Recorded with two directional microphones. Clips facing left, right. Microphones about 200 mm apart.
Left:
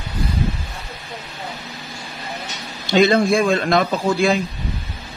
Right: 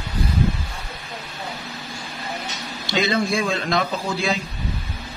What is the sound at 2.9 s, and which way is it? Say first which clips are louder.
Speech: left 7 dB; 50° left (ahead or behind).